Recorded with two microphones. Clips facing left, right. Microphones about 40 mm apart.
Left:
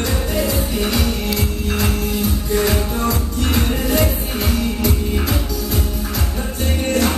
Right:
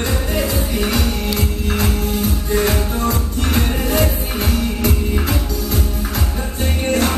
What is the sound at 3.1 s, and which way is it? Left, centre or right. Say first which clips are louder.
Music: even; right.